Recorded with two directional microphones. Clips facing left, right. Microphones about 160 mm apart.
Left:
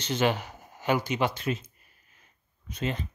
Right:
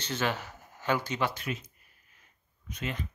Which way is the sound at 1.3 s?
30° left (ahead or behind).